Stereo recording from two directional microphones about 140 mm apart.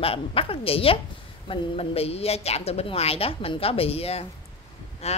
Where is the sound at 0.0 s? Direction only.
40° left (ahead or behind).